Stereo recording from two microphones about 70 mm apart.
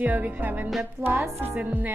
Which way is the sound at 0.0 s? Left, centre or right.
Right.